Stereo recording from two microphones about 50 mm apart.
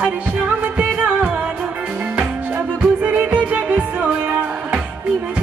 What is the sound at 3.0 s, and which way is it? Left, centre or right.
Music, right.